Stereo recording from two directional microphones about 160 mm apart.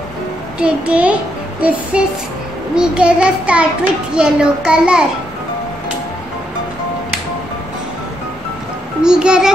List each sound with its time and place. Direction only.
0.6 s child singing: 5° right (ahead or behind)
4.1 s a child's voice: 5° right (ahead or behind)
9.0 s a child's voice: 5° right (ahead or behind)